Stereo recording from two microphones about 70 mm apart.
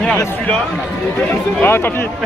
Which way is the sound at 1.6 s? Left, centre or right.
Left.